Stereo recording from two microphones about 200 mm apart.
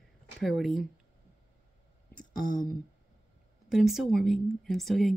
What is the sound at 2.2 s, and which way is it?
Speech, 5° left (ahead or behind).